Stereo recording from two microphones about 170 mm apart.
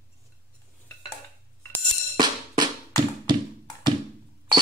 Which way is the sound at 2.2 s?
25° right (ahead or behind).